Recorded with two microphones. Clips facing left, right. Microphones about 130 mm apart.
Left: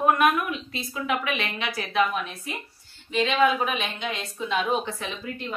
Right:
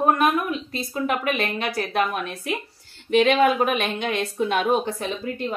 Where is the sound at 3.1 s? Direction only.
60° right (ahead or behind).